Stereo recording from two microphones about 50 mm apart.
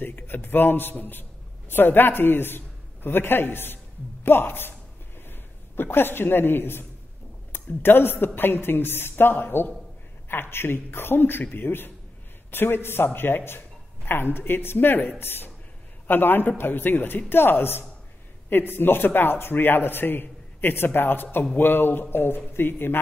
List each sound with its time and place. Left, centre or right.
0.0 s a man's voice: left
15.1 s a man's voice: left